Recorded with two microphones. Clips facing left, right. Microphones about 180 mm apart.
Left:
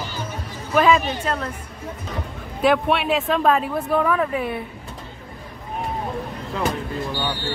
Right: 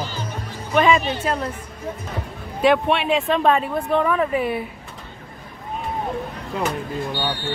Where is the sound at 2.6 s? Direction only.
Centre (ahead or behind).